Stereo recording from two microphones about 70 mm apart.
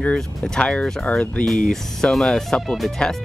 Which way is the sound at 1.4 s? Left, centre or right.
Centre.